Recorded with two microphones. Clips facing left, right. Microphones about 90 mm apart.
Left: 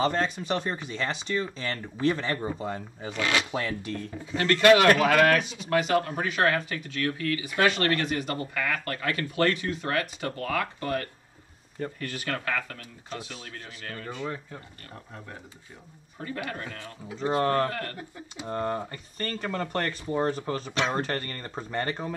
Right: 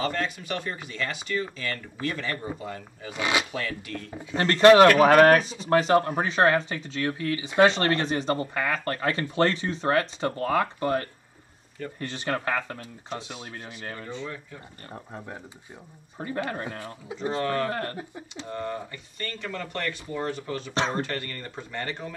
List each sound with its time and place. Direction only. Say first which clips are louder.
0.0 s speech: left 3 dB; 25° left (ahead or behind)
3.1 s speech: right 1 dB; 15° right (ahead or behind)
3.5 s speech: left 2 dB; 25° left (ahead or behind)
4.4 s speech: right 4 dB; 35° right (ahead or behind)
14.2 s speech: left 3 dB; 35° left (ahead or behind)
14.9 s speech: right 5 dB; 25° right (ahead or behind)
18.5 s speech: left 3 dB; 40° left (ahead or behind)